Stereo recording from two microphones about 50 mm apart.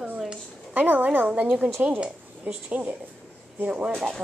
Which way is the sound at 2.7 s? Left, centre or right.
Right.